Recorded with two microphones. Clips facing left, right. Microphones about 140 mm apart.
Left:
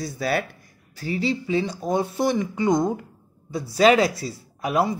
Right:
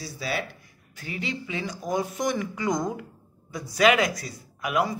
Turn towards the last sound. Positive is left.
turn(degrees=30)  # may be behind; listen again after turning